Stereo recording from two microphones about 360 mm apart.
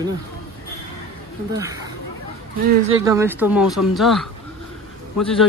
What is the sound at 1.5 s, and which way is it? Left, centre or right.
Speech, centre.